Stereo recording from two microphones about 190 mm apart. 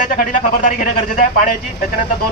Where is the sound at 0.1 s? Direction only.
45° left (ahead or behind).